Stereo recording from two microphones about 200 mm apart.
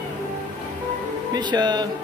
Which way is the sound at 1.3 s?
20° right (ahead or behind).